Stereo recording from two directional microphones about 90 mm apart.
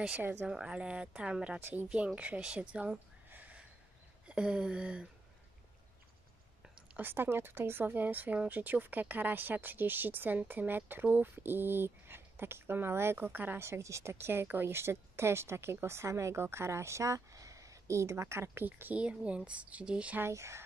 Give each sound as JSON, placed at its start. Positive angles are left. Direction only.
{"t": 0.0, "sound": "speech", "side_deg": -20}
{"t": 6.9, "sound": "speech", "side_deg": -25}
{"t": 20.2, "sound": "speech", "side_deg": -30}